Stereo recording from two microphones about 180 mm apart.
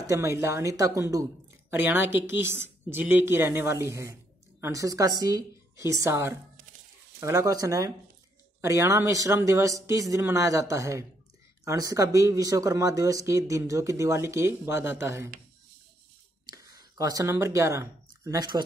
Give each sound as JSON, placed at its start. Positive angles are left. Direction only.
{"t": 0.0, "sound": "a woman's voice", "side_deg": -15}
{"t": 16.4, "sound": "speech", "side_deg": -20}